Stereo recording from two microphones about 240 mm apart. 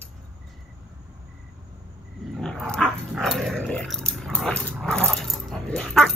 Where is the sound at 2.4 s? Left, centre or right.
Centre.